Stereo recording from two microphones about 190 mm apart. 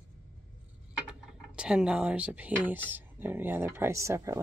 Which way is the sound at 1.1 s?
5° right (ahead or behind).